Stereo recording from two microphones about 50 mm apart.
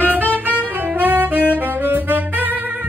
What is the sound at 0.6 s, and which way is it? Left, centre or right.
Saxophone, right.